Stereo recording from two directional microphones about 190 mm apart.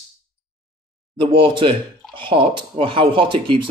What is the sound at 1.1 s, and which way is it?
Speech, 25° right (ahead or behind).